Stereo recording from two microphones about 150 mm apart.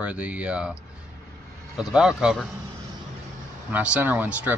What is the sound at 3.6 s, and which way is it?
Speech, 10° right (ahead or behind).